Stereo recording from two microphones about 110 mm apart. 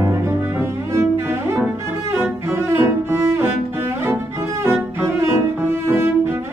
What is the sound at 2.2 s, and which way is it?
Cello, 20° right (ahead or behind).